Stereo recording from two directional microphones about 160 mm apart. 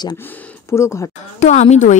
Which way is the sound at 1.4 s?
45° left (ahead or behind).